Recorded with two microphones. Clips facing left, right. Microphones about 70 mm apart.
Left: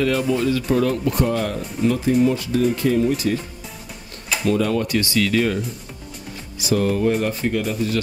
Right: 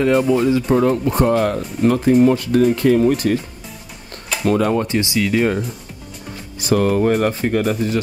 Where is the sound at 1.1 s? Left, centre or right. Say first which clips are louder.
Right 5 dB; right.